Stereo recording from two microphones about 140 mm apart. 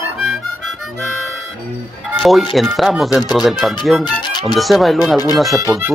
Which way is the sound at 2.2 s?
Centre (ahead or behind).